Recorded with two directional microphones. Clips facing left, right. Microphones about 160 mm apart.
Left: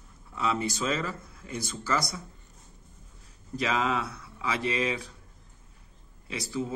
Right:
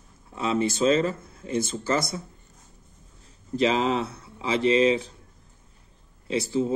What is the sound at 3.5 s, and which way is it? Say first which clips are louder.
A man's voice: right 6 dB; 25° right (ahead or behind).